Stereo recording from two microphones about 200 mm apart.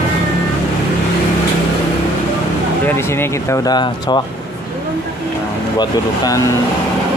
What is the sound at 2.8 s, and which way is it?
Speech, 10° left (ahead or behind).